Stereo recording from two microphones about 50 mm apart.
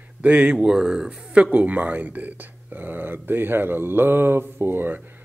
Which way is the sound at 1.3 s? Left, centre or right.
Right.